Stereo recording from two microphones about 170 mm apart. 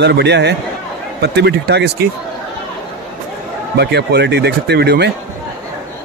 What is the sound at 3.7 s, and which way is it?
Speech, 75° right (ahead or behind).